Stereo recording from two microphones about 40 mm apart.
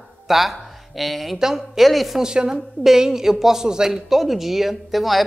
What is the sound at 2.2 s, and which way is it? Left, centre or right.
A woman's voice, centre.